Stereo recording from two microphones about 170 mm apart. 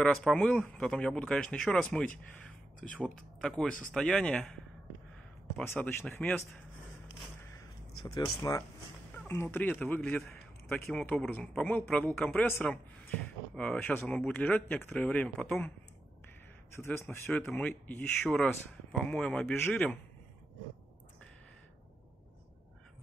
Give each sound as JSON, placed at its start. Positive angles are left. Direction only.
{"t": 0.0, "sound": "speech", "side_deg": 5}
{"t": 5.6, "sound": "speech", "side_deg": 10}
{"t": 7.5, "sound": "a sound", "side_deg": 25}
{"t": 8.4, "sound": "a man's voice", "side_deg": 15}
{"t": 16.9, "sound": "speech", "side_deg": 15}